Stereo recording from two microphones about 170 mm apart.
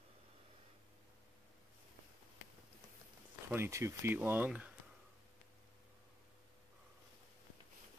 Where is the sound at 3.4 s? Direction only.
15° right (ahead or behind).